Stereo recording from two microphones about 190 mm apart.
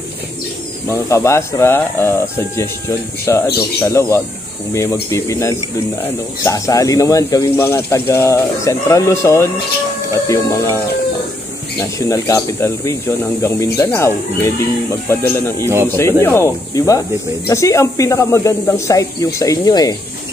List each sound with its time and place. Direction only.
0.8 s speech: 15° left (ahead or behind)
11.8 s speech: 15° left (ahead or behind)